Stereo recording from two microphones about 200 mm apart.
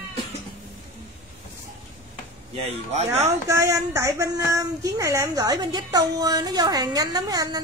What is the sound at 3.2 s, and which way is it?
Speech, 15° right (ahead or behind).